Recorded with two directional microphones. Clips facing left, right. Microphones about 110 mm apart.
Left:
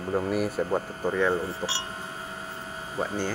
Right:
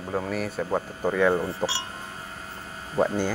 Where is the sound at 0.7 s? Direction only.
15° right (ahead or behind).